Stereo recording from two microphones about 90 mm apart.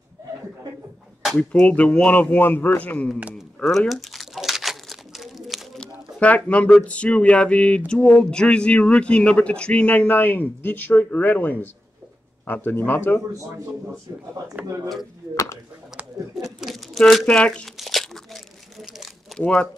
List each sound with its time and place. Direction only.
1.5 s speech: 15° left (ahead or behind)
3.5 s crumpling: 10° left (ahead or behind)
6.1 s speech: 15° left (ahead or behind)
15.3 s speech: 35° left (ahead or behind)
16.3 s crumpling: centre (ahead or behind)
17.3 s speech: 10° left (ahead or behind)
17.7 s crumpling: centre (ahead or behind)
19.4 s speech: 10° left (ahead or behind)